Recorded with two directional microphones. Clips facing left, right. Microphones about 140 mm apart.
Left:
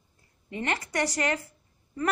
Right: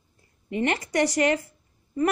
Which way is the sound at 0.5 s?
20° right (ahead or behind).